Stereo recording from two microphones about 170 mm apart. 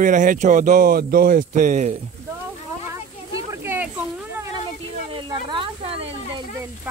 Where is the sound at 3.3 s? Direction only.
15° right (ahead or behind).